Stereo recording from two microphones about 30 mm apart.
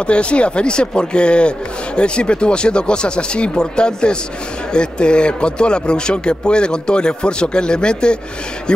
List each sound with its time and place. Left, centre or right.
0.0 s speech: left